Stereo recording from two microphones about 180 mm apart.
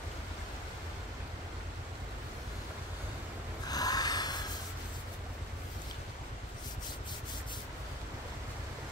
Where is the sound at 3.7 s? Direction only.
20° left (ahead or behind).